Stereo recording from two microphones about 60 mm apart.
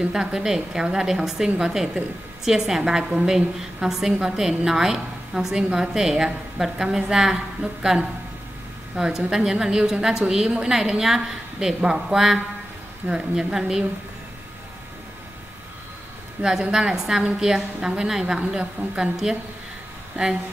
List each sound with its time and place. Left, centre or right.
0.0 s a woman's voice: centre
16.4 s a woman's voice: centre
20.2 s speech: right